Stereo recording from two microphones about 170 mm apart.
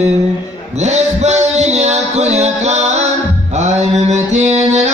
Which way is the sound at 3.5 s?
40° right (ahead or behind).